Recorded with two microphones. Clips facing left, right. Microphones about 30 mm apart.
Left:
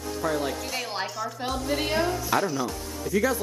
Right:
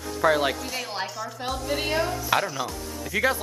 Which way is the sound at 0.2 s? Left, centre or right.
Right.